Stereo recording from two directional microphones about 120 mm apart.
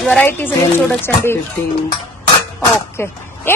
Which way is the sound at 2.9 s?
20° left (ahead or behind).